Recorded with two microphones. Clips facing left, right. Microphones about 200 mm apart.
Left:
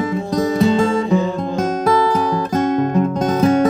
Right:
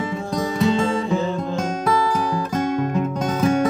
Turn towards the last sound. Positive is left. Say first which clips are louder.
# left 5 dB
turn(degrees=35)  # may be behind; listen again after turning